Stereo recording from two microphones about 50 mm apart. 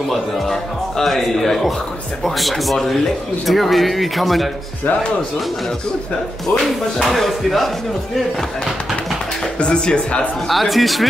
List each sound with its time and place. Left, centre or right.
0.1 s a man's voice: centre
6.6 s a man's voice: centre
9.6 s speech: centre
10.5 s a man's voice: centre